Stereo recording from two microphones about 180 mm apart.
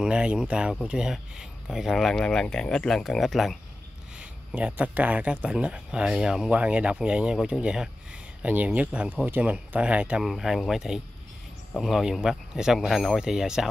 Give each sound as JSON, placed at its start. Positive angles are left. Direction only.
{"t": 0.0, "sound": "speech", "side_deg": -5}